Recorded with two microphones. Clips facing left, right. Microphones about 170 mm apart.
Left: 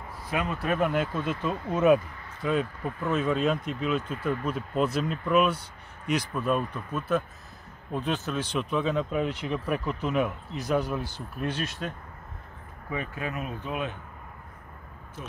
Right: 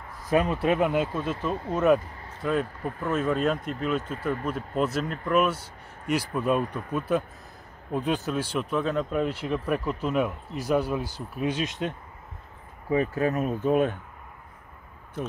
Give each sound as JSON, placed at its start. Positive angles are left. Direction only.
{"t": 0.3, "sound": "speech", "side_deg": -35}
{"t": 0.7, "sound": "speech", "side_deg": -10}
{"t": 12.9, "sound": "speech", "side_deg": -35}